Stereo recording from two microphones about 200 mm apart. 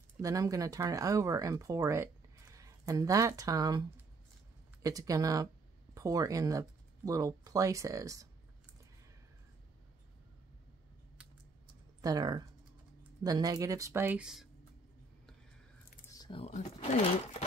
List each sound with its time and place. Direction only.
0.2 s speech: 15° right (ahead or behind)
12.0 s speech: 20° right (ahead or behind); by 14.5 s centre (ahead or behind)
16.1 s speech: 20° left (ahead or behind)